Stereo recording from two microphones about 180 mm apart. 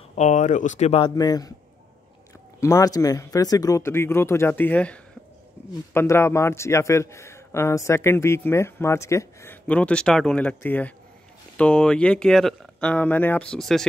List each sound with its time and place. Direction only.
0.1 s speech: 40° left (ahead or behind)
1.0 s speech: 20° left (ahead or behind)
2.6 s a man's voice: 20° left (ahead or behind); by 13.8 s centre (ahead or behind)